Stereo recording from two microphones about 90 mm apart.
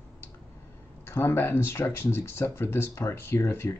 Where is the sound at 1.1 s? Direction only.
25° left (ahead or behind).